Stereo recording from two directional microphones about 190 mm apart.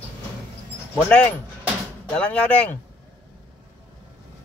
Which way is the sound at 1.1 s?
5° left (ahead or behind).